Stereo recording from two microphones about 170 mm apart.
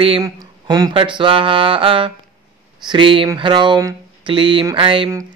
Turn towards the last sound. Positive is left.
turn(degrees=-30)  # may be behind; listen again after turning